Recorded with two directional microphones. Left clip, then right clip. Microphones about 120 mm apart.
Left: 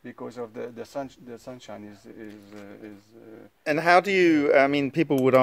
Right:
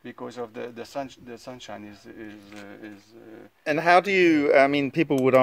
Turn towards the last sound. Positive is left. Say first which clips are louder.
# even
turn(degrees=0)  # may be behind; listen again after turning